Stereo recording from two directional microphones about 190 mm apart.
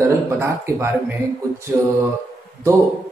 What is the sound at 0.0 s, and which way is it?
Speech, 15° right (ahead or behind).